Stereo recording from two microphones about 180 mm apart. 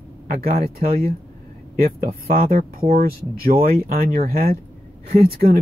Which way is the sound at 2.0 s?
55° right (ahead or behind).